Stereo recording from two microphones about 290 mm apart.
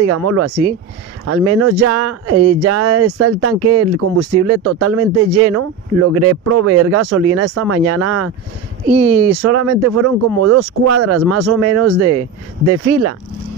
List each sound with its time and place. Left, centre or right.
0.0 s speech: right